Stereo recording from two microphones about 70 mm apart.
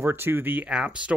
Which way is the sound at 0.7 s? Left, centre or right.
Centre.